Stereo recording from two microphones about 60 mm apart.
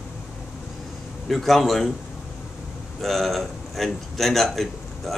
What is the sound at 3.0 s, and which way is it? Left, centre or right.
A man's voice, centre.